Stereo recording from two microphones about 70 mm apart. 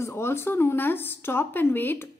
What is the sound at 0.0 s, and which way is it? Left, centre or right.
Speech, left.